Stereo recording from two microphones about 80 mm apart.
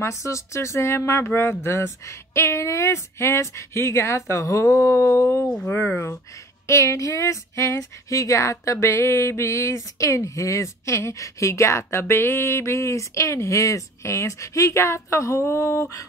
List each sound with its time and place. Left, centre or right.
0.0 s speech: left